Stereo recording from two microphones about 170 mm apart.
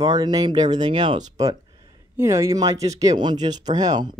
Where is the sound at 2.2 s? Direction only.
15° right (ahead or behind).